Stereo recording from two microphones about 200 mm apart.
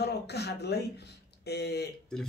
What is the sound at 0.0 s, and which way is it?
A man's voice, 55° left (ahead or behind).